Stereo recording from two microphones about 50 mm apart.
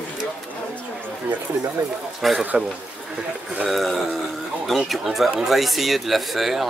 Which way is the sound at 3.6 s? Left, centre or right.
Centre.